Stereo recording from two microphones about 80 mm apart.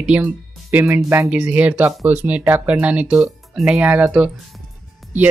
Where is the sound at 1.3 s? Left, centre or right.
Centre.